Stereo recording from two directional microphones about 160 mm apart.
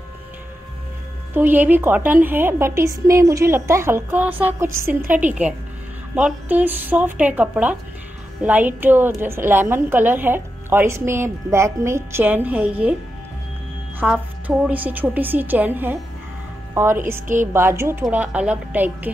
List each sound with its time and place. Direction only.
1.3 s a woman's voice: 10° right (ahead or behind)
13.9 s a woman's voice: 10° right (ahead or behind)